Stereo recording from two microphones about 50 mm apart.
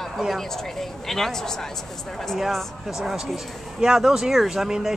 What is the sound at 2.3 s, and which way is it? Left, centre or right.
A woman's voice, centre.